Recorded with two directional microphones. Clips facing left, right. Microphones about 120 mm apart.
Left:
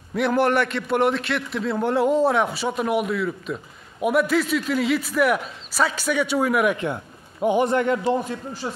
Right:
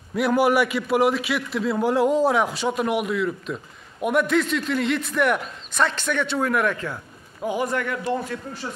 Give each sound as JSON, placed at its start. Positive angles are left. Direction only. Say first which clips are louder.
{"t": 0.1, "sound": "a man's voice", "louder": "right 1 dB", "side_deg": 0}